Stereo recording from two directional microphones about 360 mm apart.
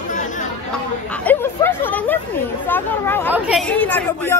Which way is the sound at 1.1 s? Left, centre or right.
Centre.